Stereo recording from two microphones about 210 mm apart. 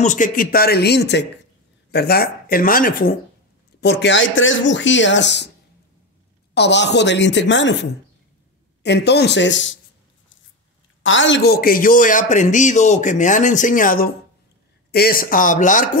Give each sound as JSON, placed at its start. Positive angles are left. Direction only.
{"t": 0.0, "sound": "speech", "side_deg": 35}
{"t": 3.8, "sound": "speech", "side_deg": 55}
{"t": 6.5, "sound": "speech", "side_deg": 55}
{"t": 8.8, "sound": "speech", "side_deg": 55}
{"t": 11.0, "sound": "a man's voice", "side_deg": 65}